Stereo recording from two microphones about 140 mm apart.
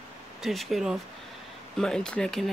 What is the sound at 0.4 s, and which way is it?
Speech, centre (ahead or behind).